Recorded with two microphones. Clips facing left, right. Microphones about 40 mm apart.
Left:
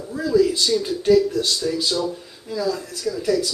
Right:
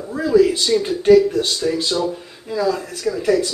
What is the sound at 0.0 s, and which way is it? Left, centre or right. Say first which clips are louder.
Speech: right 4 dB; right.